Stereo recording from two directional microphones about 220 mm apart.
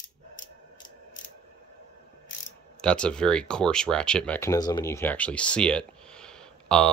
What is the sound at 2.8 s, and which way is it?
Speech, 5° left (ahead or behind).